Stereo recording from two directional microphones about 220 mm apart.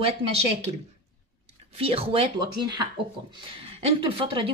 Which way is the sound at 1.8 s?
25° right (ahead or behind).